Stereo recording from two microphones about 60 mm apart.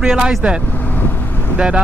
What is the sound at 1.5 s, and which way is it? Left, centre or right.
Speech, centre.